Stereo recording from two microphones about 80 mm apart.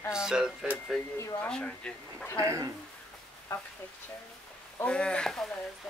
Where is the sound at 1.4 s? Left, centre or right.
Centre.